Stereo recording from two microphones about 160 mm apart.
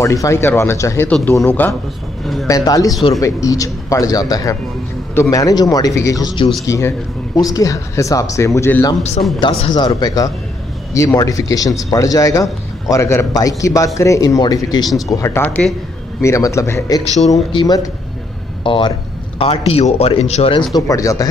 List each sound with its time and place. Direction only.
0.0 s a man's voice: 20° left (ahead or behind)
9.4 s a man's voice: 30° left (ahead or behind)
20.7 s a man's voice: 20° left (ahead or behind)